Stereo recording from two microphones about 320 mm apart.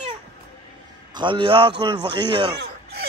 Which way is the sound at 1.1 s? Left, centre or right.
Centre.